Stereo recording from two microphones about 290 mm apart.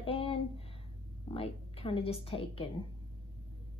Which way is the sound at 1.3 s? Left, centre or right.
Centre.